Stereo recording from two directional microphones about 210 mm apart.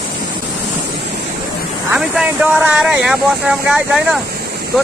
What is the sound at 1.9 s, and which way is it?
Speech, 5° right (ahead or behind).